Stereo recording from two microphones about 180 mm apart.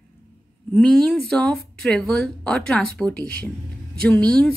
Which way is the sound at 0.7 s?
Centre (ahead or behind).